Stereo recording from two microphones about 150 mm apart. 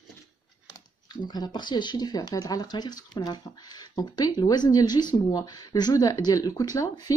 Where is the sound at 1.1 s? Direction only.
30° left (ahead or behind).